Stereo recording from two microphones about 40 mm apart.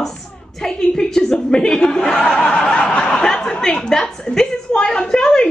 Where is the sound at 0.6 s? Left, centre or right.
Centre.